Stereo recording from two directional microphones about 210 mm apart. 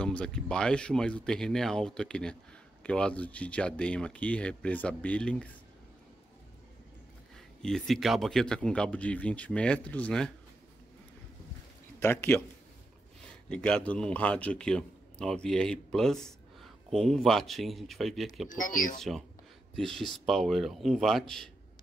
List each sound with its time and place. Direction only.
0.0 s a man's voice: 5° left (ahead or behind)
7.6 s a man's voice: centre (ahead or behind)
12.0 s a man's voice: 10° left (ahead or behind)
13.5 s a man's voice: 5° left (ahead or behind)
18.5 s speech: 40° left (ahead or behind)
18.9 s a man's voice: centre (ahead or behind)